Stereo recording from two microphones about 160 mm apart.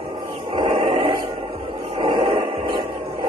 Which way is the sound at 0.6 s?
30° right (ahead or behind).